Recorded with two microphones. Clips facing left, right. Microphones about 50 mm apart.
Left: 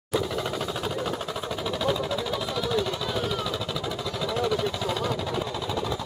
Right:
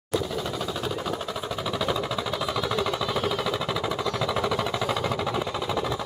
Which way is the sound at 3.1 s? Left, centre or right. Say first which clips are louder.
Right 2 dB; right.